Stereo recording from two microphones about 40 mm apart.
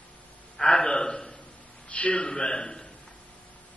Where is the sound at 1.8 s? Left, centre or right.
Left.